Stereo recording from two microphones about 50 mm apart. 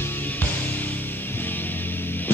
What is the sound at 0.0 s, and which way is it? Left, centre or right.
Music, left.